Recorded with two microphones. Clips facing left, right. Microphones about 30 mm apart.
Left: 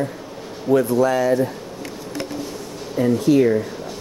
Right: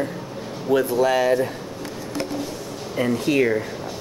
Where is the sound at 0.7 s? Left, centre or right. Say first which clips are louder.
Left 2 dB; right.